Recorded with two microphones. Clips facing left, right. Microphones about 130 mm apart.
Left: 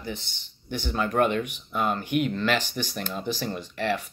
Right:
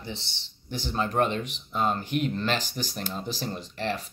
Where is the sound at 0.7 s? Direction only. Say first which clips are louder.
Left 2 dB; 35° right (ahead or behind).